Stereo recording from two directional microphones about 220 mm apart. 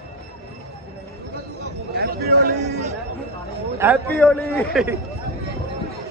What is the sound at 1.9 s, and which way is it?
Speech, 45° right (ahead or behind).